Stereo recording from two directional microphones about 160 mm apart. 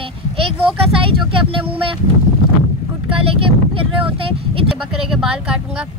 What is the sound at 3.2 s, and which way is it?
Speech, 35° right (ahead or behind).